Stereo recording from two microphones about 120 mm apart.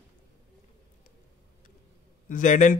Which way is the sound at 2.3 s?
90° left.